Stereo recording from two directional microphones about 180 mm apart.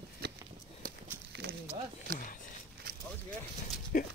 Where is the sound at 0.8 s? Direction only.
60° right (ahead or behind).